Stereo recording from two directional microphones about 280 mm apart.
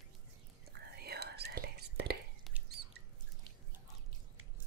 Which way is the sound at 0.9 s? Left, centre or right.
Right.